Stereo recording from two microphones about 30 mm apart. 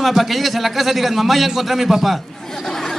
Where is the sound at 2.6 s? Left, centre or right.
Centre.